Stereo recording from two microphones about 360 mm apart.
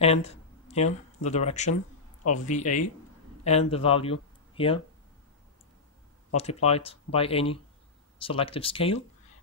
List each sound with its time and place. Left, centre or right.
0.0 s speech: centre
6.3 s speech: centre